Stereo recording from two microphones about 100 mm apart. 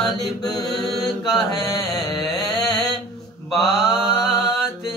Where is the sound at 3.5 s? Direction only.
Centre (ahead or behind).